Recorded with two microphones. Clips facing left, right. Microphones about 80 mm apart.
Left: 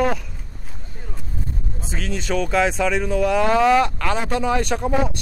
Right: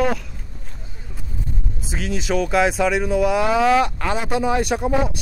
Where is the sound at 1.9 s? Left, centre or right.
Centre.